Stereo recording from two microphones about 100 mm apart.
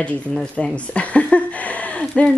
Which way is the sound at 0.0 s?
10° left (ahead or behind).